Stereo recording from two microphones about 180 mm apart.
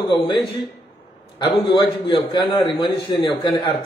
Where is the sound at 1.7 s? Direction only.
30° left (ahead or behind).